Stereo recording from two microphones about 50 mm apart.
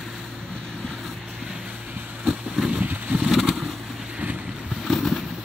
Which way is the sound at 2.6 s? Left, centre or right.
Centre.